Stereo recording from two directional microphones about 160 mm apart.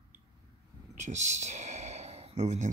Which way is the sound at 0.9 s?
50° right (ahead or behind).